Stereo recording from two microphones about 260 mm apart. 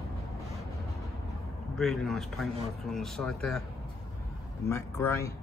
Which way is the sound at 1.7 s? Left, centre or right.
Centre.